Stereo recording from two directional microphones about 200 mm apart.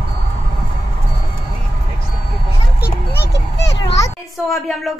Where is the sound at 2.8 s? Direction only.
60° left (ahead or behind).